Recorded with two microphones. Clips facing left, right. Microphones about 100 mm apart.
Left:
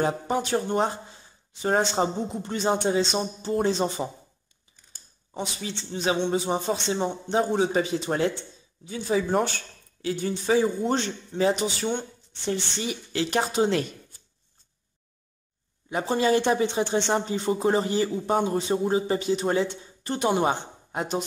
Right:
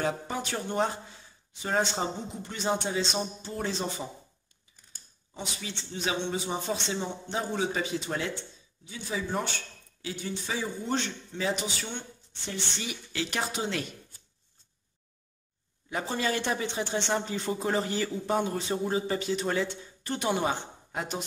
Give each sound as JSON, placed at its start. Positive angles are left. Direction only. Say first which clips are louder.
{"t": 0.0, "sound": "a man's voice", "louder": "left 6 dB", "side_deg": 30}
{"t": 2.0, "sound": "speech", "louder": "left 7 dB", "side_deg": 35}
{"t": 5.3, "sound": "speech", "louder": "left 6 dB", "side_deg": 35}
{"t": 11.0, "sound": "speech", "louder": "left 7 dB", "side_deg": 35}
{"t": 15.9, "sound": "a man's voice", "louder": "left 7 dB", "side_deg": 25}
{"t": 17.8, "sound": "a man's voice", "louder": "left 5 dB", "side_deg": 25}